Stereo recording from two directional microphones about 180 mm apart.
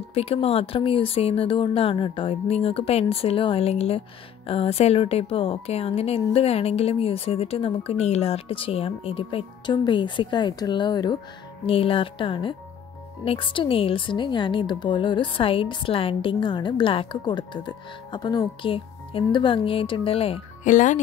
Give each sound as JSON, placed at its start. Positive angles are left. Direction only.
{"t": 0.1, "sound": "a woman's voice", "side_deg": 35}
{"t": 20.7, "sound": "speech", "side_deg": 45}